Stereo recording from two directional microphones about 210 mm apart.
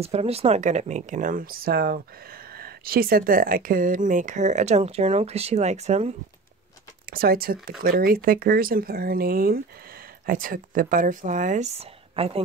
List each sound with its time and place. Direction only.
0.0 s speech: 30° right (ahead or behind)
7.1 s speech: 45° right (ahead or behind); by 12.4 s 30° right (ahead or behind)